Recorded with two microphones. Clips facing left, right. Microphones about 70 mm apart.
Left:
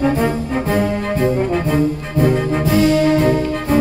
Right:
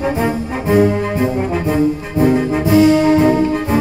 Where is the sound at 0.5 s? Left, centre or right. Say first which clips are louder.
Right 7 dB; centre.